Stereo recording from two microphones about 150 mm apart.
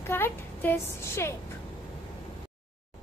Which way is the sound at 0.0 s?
15° left (ahead or behind).